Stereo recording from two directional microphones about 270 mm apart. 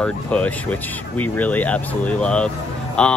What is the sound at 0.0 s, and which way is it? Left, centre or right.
Speech, centre.